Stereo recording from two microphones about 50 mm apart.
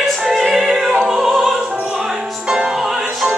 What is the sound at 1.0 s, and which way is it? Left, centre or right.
Opera, centre.